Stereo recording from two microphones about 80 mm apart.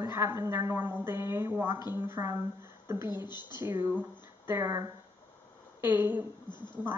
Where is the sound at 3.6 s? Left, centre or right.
Right.